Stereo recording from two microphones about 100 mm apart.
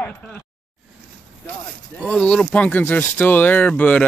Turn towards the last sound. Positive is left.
turn(degrees=15)  # may be behind; listen again after turning